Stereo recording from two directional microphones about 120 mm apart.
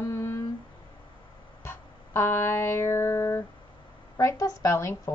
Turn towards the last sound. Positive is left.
turn(degrees=25)  # may be behind; listen again after turning